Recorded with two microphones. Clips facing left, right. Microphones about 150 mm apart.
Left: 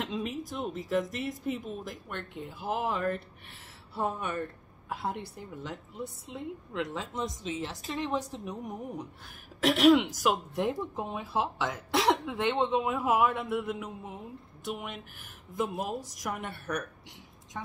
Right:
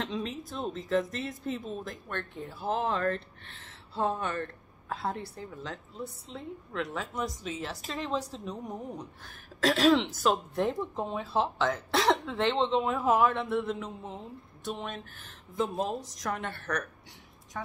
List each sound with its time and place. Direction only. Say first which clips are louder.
0.0 s a woman's voice: even; 10° left (ahead or behind)
15.5 s speech: right 2 dB; 10° left (ahead or behind)